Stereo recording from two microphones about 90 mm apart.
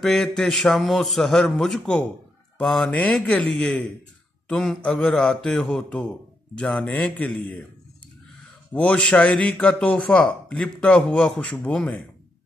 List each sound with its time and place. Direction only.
0.0 s a man's voice: 5° left (ahead or behind)
2.9 s a man's voice: 15° left (ahead or behind)
8.7 s a man's voice: 15° left (ahead or behind)